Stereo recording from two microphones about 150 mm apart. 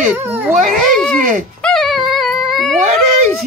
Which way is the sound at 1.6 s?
Centre (ahead or behind).